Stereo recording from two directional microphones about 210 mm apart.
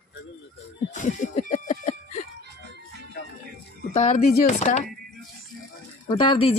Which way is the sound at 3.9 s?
35° left (ahead or behind).